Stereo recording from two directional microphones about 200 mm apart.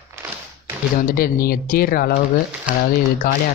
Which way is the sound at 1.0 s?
45° left (ahead or behind).